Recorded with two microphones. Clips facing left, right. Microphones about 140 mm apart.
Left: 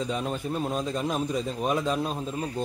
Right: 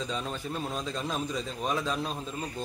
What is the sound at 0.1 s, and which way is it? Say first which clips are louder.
Speech: left 5 dB; 20° left (ahead or behind).